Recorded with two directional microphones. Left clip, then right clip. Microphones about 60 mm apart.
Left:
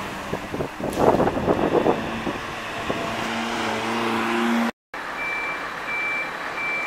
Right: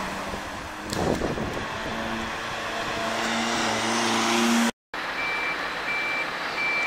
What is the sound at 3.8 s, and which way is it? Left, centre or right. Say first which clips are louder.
Vehicle: even; right.